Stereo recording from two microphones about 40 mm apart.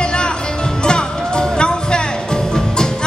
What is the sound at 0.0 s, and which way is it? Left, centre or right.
Music, left.